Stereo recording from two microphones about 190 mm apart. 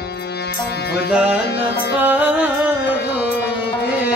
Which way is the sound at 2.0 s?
5° right (ahead or behind).